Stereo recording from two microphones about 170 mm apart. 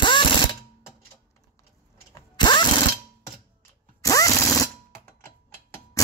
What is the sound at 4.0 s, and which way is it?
Drill, 20° left (ahead or behind).